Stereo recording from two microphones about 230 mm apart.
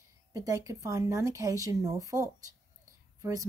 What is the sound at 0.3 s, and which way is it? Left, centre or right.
A woman's voice, centre.